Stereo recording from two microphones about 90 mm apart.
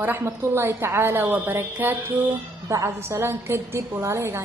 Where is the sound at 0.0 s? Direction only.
25° right (ahead or behind).